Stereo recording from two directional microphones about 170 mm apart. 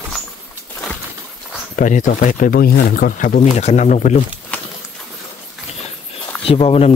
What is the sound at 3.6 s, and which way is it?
Speech, 45° left (ahead or behind).